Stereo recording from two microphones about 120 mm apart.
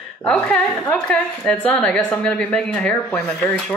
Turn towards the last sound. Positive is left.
turn(degrees=5)  # may be behind; listen again after turning